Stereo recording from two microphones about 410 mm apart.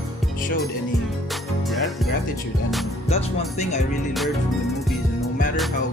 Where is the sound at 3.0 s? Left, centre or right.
Centre.